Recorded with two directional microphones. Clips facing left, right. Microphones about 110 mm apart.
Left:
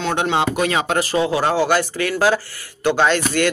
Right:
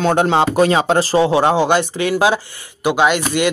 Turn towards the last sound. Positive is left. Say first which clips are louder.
# right 2 dB
turn(degrees=-15)  # may be behind; listen again after turning